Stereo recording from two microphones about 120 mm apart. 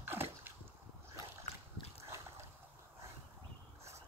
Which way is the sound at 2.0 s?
25° right (ahead or behind).